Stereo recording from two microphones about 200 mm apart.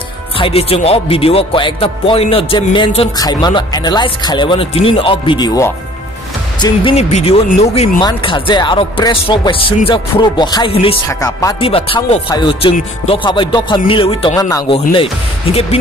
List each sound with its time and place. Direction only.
0.4 s speech: 30° left (ahead or behind)
8.0 s speech: 25° left (ahead or behind)
11.1 s speech: 15° left (ahead or behind)
11.7 s speech: 25° left (ahead or behind)